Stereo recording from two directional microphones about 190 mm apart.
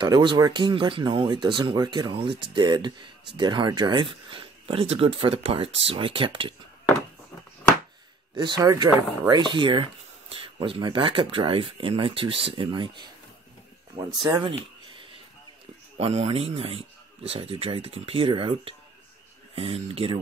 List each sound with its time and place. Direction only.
0.0 s speech: 25° right (ahead or behind)
8.4 s speech: 25° right (ahead or behind)
14.5 s a sound: 25° right (ahead or behind)
16.0 s speech: 30° right (ahead or behind)